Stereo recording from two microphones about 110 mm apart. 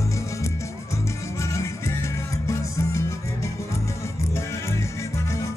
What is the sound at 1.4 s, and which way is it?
Music, 25° left (ahead or behind).